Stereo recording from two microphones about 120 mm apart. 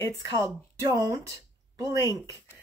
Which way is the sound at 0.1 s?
25° right (ahead or behind).